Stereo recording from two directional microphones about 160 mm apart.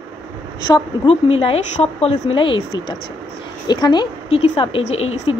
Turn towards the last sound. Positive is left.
turn(degrees=40)  # may be behind; listen again after turning